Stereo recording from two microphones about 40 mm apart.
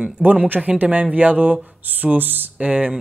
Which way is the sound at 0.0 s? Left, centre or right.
Right.